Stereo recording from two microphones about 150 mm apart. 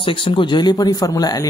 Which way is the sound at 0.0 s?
35° left (ahead or behind).